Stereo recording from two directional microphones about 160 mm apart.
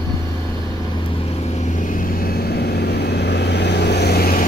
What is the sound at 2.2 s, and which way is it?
Vehicle, 85° left.